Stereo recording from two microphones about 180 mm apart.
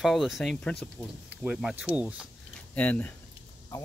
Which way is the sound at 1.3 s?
5° right (ahead or behind).